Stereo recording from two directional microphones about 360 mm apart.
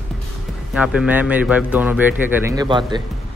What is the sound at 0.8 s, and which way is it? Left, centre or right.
Speech, centre.